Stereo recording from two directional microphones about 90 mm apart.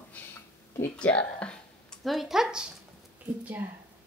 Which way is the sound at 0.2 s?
15° left (ahead or behind).